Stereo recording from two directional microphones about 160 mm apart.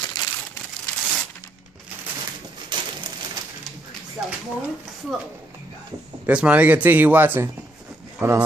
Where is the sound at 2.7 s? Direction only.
25° right (ahead or behind).